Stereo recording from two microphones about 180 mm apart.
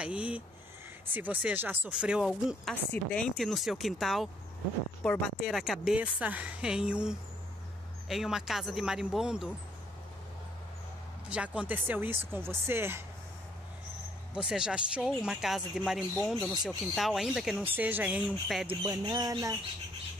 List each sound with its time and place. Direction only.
0.0 s speech: 5° right (ahead or behind)
2.7 s speech: 10° left (ahead or behind)
11.2 s speech: 5° right (ahead or behind)
14.3 s speech: 5° right (ahead or behind)
18.8 s speech: 20° right (ahead or behind)